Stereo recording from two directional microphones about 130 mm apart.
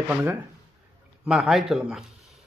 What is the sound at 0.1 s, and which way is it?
Speech, 15° right (ahead or behind).